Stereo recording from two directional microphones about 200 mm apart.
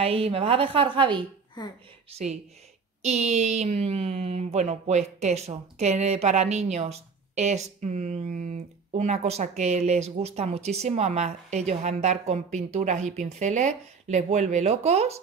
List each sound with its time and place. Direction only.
0.0 s a woman's voice: 30° right (ahead or behind)